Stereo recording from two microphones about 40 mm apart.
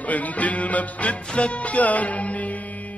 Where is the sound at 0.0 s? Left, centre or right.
Left.